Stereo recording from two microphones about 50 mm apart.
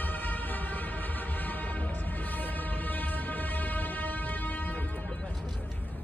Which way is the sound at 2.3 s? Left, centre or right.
Left.